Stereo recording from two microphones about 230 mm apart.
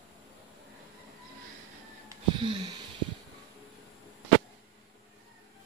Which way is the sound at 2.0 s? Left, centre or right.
Centre.